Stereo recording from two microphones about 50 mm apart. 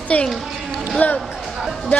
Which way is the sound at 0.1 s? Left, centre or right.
Left.